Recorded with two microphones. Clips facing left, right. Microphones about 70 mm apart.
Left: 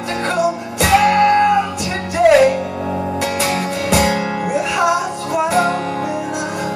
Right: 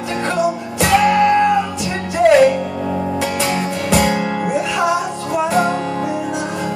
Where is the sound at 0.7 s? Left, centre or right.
Centre.